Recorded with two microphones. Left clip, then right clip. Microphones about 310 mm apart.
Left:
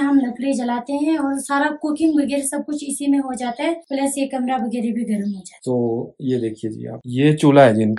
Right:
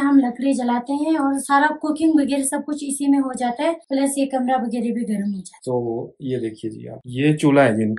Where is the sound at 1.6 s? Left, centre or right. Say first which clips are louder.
Right 1 dB; centre.